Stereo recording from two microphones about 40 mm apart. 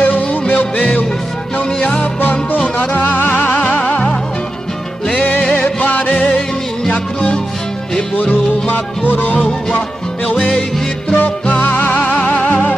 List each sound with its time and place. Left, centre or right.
0.0 s music: left
1.8 s music: left
2.9 s music: left
5.5 s music: left
6.1 s music: left
8.2 s music: left
9.0 s music: left
11.1 s music: left
12.3 s music: left